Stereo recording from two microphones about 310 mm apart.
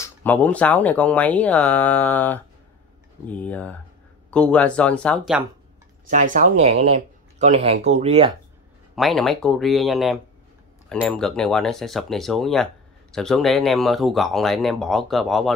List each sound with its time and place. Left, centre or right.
0.0 s speech: centre
6.0 s speech: right
8.9 s speech: centre